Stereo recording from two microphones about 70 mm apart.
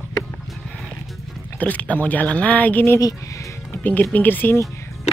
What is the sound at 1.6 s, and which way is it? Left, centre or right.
Speech, left.